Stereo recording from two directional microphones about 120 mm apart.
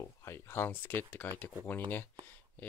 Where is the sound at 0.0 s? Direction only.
25° left (ahead or behind).